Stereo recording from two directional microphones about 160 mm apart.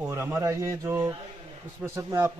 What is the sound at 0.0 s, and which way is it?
A man's voice, 15° right (ahead or behind).